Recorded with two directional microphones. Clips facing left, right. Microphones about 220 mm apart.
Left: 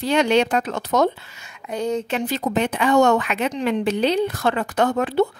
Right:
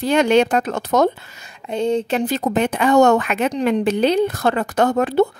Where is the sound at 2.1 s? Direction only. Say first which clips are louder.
Right 3 dB; 45° right (ahead or behind).